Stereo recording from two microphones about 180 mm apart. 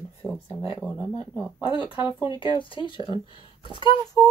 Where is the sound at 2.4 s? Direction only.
25° left (ahead or behind).